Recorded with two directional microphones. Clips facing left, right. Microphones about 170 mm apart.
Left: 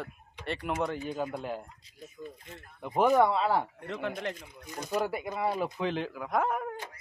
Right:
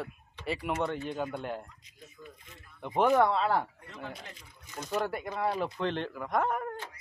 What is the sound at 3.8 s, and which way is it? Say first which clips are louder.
Speech: left 9 dB; 75° left (ahead or behind).